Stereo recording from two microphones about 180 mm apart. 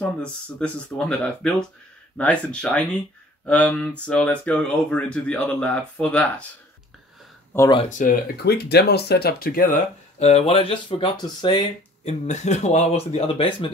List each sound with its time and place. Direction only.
0.0 s speech: 5° left (ahead or behind)
7.5 s speech: 10° left (ahead or behind)
8.0 s speech: 55° left (ahead or behind); by 11.6 s 25° left (ahead or behind)
12.0 s speech: 40° left (ahead or behind)